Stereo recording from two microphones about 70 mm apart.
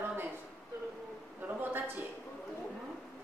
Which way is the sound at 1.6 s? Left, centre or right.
Right.